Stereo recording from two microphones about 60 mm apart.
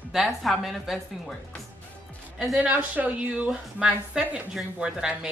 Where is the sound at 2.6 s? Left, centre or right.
Right.